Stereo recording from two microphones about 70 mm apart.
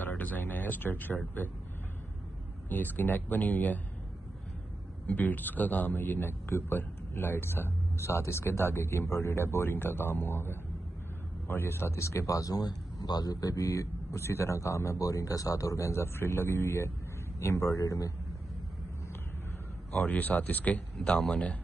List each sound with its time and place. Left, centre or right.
0.0 s speech: left
2.7 s speech: left
5.0 s a man's voice: left
19.9 s speech: left
21.1 s speech: centre